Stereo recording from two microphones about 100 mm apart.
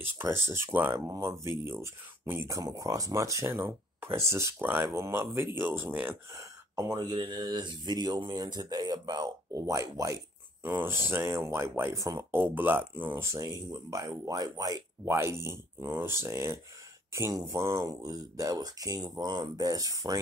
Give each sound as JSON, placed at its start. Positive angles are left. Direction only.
{"t": 0.0, "sound": "speech", "side_deg": -25}
{"t": 1.0, "sound": "speech", "side_deg": -35}
{"t": 7.2, "sound": "speech", "side_deg": -45}
{"t": 9.5, "sound": "speech", "side_deg": -30}
{"t": 10.6, "sound": "speech", "side_deg": -20}
{"t": 12.4, "sound": "speech", "side_deg": -20}
{"t": 15.0, "sound": "speech", "side_deg": -25}